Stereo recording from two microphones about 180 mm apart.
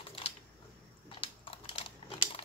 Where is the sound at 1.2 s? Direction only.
30° left (ahead or behind).